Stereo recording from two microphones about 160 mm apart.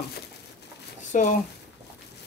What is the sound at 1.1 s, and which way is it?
Speech, 50° left (ahead or behind).